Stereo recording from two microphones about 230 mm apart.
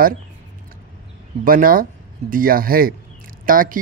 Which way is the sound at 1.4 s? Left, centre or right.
Right.